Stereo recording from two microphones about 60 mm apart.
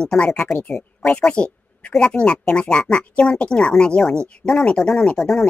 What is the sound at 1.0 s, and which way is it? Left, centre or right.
Speech, centre.